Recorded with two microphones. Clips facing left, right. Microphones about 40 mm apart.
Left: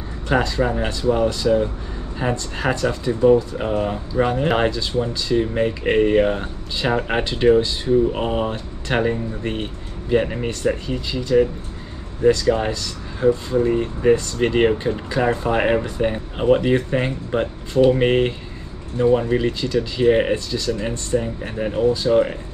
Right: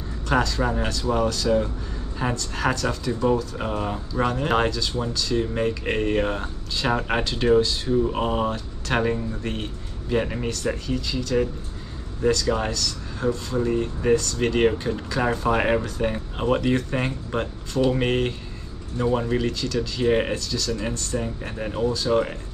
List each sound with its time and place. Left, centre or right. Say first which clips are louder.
0.3 s speech: left 3 dB; centre